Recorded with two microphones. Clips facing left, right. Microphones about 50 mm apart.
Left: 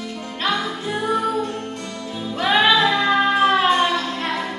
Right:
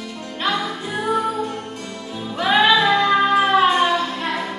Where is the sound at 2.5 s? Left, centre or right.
Centre.